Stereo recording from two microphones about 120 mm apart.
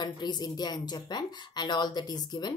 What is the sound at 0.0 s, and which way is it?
Speech, 35° left (ahead or behind).